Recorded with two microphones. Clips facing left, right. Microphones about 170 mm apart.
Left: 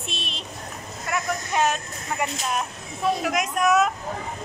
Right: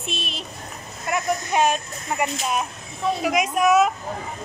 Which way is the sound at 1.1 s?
15° right (ahead or behind).